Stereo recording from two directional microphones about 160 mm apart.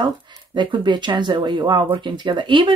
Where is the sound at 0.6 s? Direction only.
30° right (ahead or behind).